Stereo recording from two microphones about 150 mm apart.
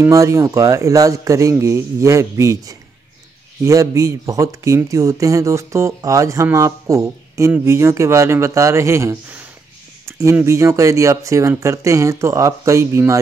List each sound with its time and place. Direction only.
0.0 s speech: 20° right (ahead or behind)